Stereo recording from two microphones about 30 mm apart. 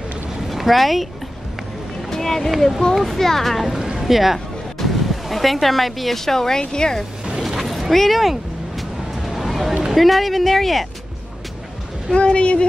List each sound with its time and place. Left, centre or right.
0.5 s speech: centre
2.0 s a sound: centre
2.9 s a child's voice: centre
3.5 s speech: centre
3.9 s music: centre
6.1 s a child's voice: centre
6.6 s speech: left
7.4 s a sound: centre
7.9 s a child's voice: centre
8.2 s a sound: centre
9.9 s speech: centre
12.2 s speech: left